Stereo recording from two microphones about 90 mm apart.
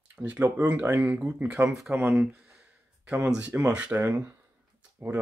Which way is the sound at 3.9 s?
25° right (ahead or behind).